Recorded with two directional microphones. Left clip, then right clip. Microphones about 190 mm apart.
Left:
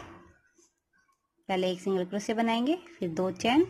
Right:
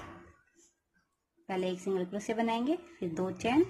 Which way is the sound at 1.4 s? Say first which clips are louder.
Left 5 dB; 30° left (ahead or behind).